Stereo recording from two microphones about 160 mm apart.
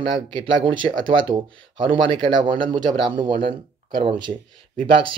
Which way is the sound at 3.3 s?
60° right (ahead or behind).